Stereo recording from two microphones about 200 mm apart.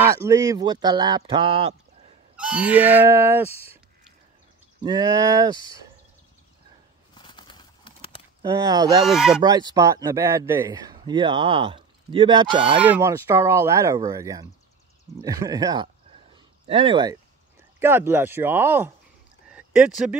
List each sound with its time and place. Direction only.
0.0 s speech: 15° right (ahead or behind)
2.3 s speech: 5° right (ahead or behind)
4.8 s speech: 20° right (ahead or behind)
7.2 s bird: 25° left (ahead or behind)
8.4 s speech: 20° right (ahead or behind)
9.0 s speech: centre (ahead or behind)
9.4 s speech: 20° right (ahead or behind)
12.8 s speech: 10° right (ahead or behind)
17.7 s speech: 10° right (ahead or behind)